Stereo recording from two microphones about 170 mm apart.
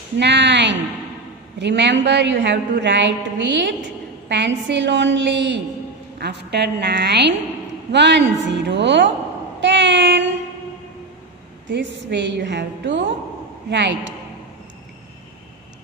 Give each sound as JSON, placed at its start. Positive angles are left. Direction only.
{"t": 0.2, "sound": "a woman's voice", "side_deg": -90}
{"t": 6.1, "sound": "a woman's voice", "side_deg": -75}
{"t": 9.6, "sound": "a sound", "side_deg": -90}
{"t": 11.6, "sound": "a woman's voice", "side_deg": -90}